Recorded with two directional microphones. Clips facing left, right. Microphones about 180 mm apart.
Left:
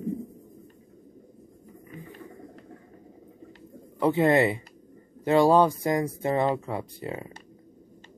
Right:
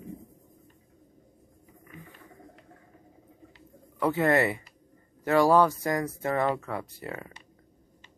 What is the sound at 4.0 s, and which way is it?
Speech, 20° left (ahead or behind).